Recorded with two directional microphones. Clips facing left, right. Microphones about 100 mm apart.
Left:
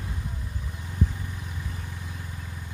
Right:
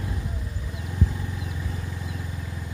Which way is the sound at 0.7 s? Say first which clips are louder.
Right 1 dB; 90° right.